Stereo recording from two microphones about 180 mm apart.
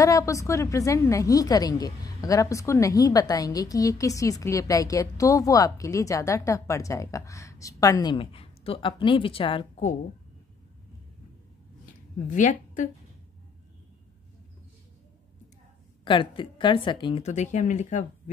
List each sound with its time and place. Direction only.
0.0 s a woman's voice: 15° left (ahead or behind)
11.8 s a sound: 45° left (ahead or behind)
16.0 s a woman's voice: 25° left (ahead or behind); by 18.0 s 40° left (ahead or behind)